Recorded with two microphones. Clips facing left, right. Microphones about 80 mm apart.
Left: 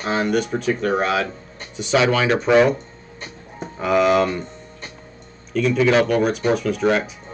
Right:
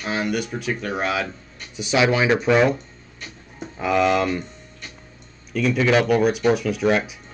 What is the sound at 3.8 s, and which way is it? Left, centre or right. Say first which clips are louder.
Speech: left 3 dB; centre.